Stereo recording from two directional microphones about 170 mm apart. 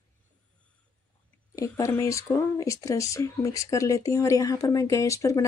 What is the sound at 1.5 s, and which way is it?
Speech, 20° left (ahead or behind).